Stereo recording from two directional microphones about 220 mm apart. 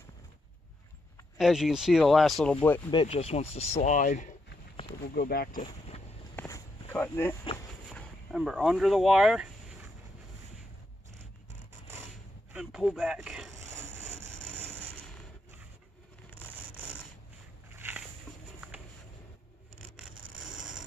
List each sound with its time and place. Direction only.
1.4 s speech: centre (ahead or behind)
2.9 s speech: 25° left (ahead or behind); by 5.6 s 40° left (ahead or behind)
5.6 s vehicle: 30° left (ahead or behind)
6.3 s a sound: 10° left (ahead or behind); by 9.8 s 5° right (ahead or behind)
12.5 s speech: 5° right (ahead or behind)
13.7 s vehicle: 10° right (ahead or behind)
17.6 s a sound: 10° right (ahead or behind)